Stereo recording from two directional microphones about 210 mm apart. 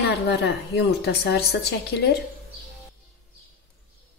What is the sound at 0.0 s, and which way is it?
A woman's voice, 55° left (ahead or behind).